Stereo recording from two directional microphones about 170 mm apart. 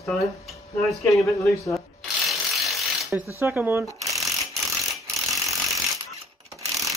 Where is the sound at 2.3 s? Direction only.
Centre (ahead or behind).